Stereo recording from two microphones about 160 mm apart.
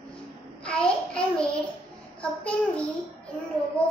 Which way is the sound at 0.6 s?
5° left (ahead or behind).